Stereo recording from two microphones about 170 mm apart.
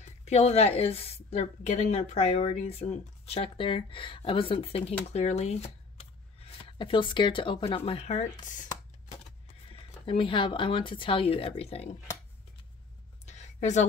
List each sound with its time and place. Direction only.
0.0 s a woman's voice: 40° left (ahead or behind)
9.7 s a woman's voice: 35° left (ahead or behind)
13.2 s a sound: 45° left (ahead or behind)